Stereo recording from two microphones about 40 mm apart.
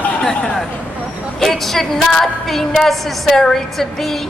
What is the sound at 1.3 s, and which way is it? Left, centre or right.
A woman's voice, centre.